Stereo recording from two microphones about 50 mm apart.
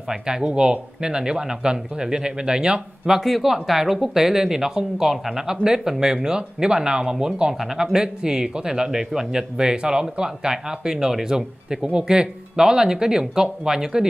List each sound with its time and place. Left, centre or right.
0.1 s speech: centre
3.2 s speech: centre